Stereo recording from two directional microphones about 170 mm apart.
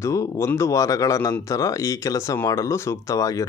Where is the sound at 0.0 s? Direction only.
15° left (ahead or behind).